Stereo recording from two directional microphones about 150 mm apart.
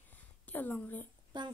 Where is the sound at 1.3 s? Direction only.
30° right (ahead or behind).